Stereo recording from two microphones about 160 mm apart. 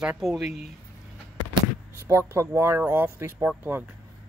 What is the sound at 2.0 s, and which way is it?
Speech, 20° right (ahead or behind).